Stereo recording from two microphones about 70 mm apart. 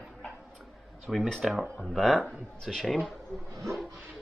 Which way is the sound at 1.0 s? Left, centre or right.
Centre.